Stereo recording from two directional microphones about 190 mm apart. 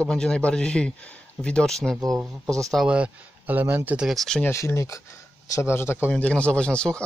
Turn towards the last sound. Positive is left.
turn(degrees=5)  # may be behind; listen again after turning